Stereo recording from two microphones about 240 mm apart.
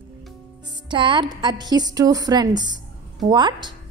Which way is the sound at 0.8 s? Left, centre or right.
Centre.